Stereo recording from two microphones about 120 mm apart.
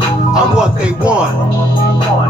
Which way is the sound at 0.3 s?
5° right (ahead or behind).